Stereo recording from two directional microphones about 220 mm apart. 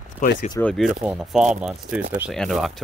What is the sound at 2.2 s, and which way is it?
Speech, centre (ahead or behind).